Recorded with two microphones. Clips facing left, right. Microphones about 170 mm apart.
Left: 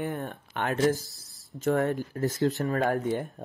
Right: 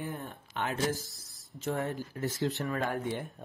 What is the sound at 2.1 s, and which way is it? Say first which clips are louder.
Speech: left 5 dB; 45° left (ahead or behind).